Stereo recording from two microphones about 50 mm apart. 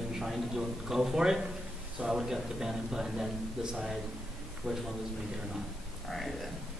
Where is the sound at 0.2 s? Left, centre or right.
Centre.